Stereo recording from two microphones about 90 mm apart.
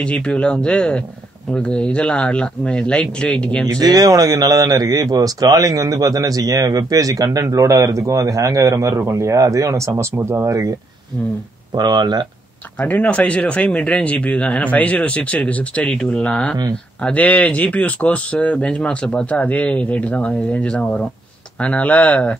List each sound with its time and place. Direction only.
0.0 s speech: 10° left (ahead or behind)
3.8 s speech: 45° right (ahead or behind); by 10.5 s 30° right (ahead or behind)
11.7 s speech: 55° right (ahead or behind)
12.8 s speech: 15° left (ahead or behind)